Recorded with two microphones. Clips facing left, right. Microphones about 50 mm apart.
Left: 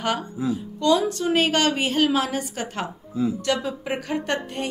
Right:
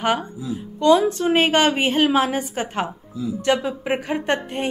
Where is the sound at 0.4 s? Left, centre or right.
Left.